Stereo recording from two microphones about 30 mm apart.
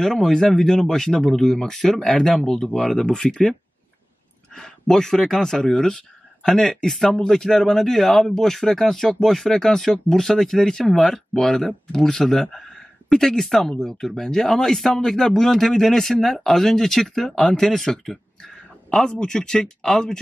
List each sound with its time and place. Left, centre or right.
0.3 s speech: left
3.2 s speech: centre
4.6 s speech: left
15.0 s speech: left